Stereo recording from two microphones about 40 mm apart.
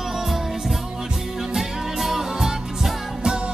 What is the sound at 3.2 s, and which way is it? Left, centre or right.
Music, right.